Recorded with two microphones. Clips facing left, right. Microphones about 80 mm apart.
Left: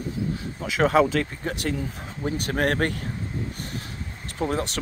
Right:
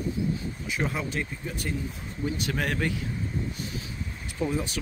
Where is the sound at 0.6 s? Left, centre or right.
Left.